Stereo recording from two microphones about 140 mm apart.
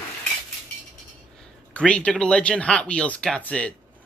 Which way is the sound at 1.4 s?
10° left (ahead or behind).